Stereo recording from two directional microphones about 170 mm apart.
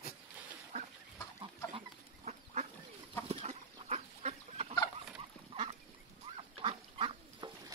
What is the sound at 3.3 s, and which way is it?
Chicken, 35° right (ahead or behind).